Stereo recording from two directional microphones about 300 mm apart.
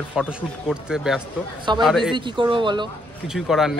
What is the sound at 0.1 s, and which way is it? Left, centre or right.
Speech, centre.